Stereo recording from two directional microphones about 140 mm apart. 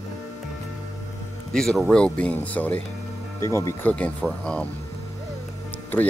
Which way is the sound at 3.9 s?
10° left (ahead or behind).